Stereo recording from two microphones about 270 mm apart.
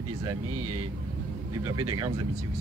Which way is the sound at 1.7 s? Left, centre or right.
Right.